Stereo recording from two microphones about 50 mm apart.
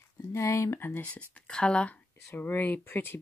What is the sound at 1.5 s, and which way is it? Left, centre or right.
Speech, centre.